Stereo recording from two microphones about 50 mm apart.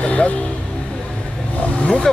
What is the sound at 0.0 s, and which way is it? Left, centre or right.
Vehicle, left.